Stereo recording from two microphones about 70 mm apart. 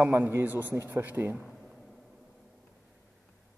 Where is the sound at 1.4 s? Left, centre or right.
Centre.